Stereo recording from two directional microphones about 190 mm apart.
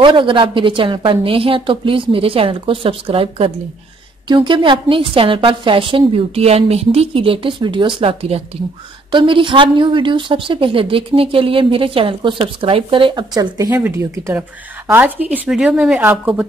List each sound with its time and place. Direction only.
0.0 s a woman's voice: 25° right (ahead or behind); by 16.4 s 10° right (ahead or behind)